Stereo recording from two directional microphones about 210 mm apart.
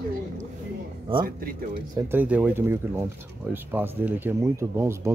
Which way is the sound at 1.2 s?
45° right (ahead or behind).